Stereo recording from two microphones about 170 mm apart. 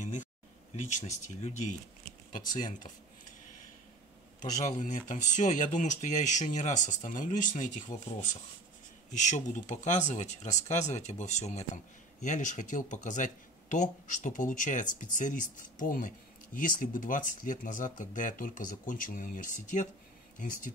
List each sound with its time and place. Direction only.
0.0 s a sound: 45° left (ahead or behind)
0.7 s speech: 45° left (ahead or behind)
4.4 s speech: 45° left (ahead or behind)